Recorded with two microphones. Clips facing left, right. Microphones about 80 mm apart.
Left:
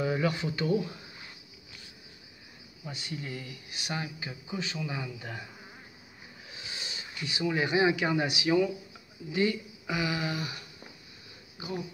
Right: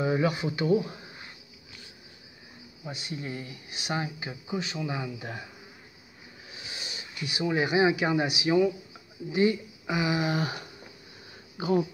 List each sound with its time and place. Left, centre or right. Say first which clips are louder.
0.0 s speech: right 3 dB; centre
2.8 s speech: right 2 dB; centre
3.2 s speech: right 3 dB; right
6.7 s a sound: even; centre
7.6 s speech: right 2 dB; centre
10.3 s speech: right 6 dB; right